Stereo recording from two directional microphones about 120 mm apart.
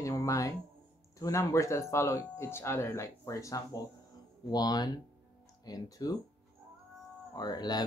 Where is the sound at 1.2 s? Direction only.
25° left (ahead or behind).